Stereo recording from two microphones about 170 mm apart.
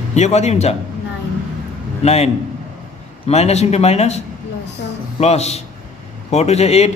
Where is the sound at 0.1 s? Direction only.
40° left (ahead or behind).